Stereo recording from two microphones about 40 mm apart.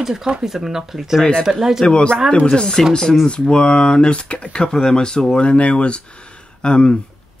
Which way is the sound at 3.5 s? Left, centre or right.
Left.